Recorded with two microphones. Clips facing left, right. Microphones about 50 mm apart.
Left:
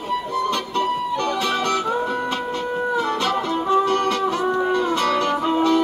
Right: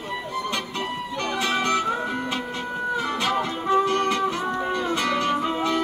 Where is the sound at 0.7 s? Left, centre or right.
Right.